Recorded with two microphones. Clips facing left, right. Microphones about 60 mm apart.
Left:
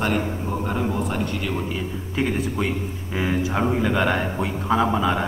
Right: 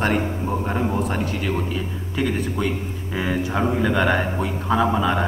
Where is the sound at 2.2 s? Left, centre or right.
Right.